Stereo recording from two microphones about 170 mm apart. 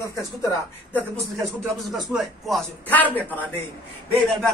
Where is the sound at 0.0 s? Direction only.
20° left (ahead or behind).